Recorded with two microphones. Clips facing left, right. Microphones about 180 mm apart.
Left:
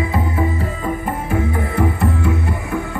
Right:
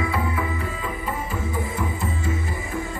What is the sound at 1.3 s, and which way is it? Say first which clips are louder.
Music: left 8 dB; 65° left (ahead or behind).